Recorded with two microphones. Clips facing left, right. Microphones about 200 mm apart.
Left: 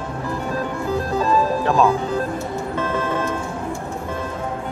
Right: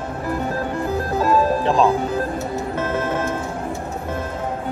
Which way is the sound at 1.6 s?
30° right (ahead or behind).